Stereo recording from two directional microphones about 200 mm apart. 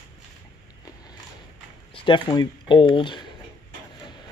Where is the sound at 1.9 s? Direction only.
25° left (ahead or behind).